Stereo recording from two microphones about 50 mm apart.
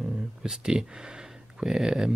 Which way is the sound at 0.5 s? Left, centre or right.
Centre.